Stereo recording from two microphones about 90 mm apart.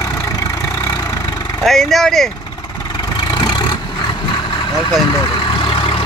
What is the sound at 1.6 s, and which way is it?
Speech, 5° left (ahead or behind).